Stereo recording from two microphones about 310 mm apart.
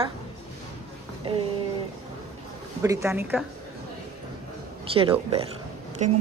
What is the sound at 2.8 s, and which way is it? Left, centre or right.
Speech, centre.